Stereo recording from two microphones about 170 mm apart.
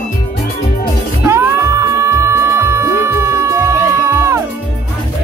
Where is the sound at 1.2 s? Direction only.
15° right (ahead or behind).